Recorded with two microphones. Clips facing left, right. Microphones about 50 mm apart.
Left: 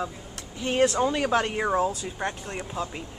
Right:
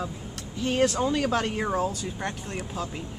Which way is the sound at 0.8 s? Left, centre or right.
Centre.